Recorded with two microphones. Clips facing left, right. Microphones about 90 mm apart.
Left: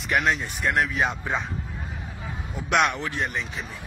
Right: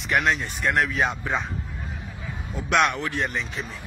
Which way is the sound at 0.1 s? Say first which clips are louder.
Right 1 dB; 5° left (ahead or behind).